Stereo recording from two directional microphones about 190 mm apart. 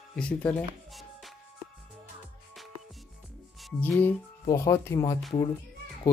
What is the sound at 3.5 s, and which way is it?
Speech, centre (ahead or behind).